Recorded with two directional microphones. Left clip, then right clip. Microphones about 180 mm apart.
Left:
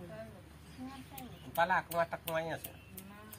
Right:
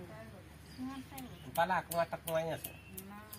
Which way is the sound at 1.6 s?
60° right (ahead or behind).